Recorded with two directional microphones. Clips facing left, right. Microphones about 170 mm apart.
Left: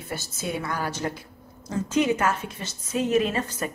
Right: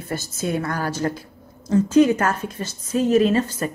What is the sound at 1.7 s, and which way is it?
Speech, 35° right (ahead or behind).